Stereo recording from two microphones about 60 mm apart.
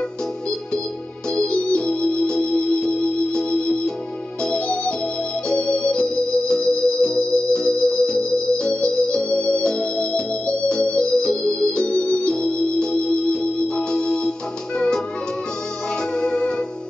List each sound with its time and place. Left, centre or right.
1.3 s organ: centre
4.5 s music: centre
5.5 s organ: centre
13.3 s music: centre
16.2 s music: centre